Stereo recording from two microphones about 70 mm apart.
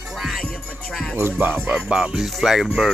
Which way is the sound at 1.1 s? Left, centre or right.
Right.